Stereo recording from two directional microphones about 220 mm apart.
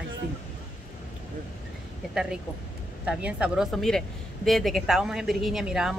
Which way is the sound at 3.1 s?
5° right (ahead or behind).